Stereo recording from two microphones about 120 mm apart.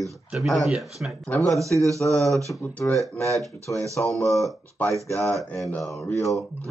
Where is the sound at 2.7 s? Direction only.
20° left (ahead or behind).